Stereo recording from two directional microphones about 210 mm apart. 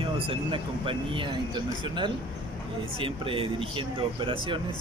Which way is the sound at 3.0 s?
25° right (ahead or behind).